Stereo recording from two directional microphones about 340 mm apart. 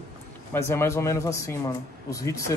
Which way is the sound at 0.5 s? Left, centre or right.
Centre.